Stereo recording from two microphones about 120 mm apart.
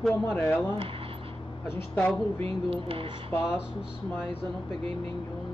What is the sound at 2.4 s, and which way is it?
Speech, 50° right (ahead or behind).